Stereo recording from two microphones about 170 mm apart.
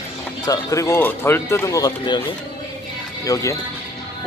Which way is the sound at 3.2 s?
20° left (ahead or behind).